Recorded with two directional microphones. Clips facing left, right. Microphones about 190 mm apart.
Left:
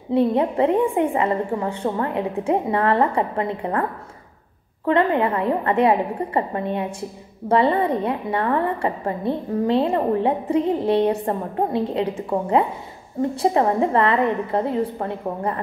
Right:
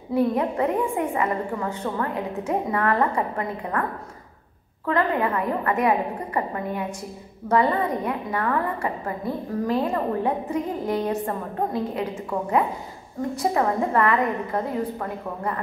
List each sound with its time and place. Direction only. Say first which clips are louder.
0.1 s a woman's voice: left 3 dB; 25° left (ahead or behind)
4.8 s a woman's voice: left 4 dB; 25° left (ahead or behind)